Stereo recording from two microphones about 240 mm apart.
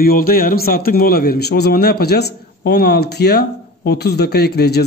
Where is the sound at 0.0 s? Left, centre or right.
Left.